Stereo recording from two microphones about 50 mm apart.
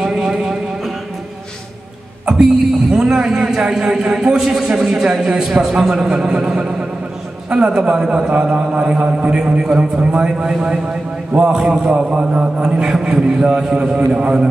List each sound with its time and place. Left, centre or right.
0.0 s a sound: centre
2.9 s a man's voice: centre
11.9 s a man's voice: right